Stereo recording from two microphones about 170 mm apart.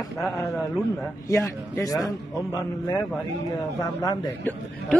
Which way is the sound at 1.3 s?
15° left (ahead or behind).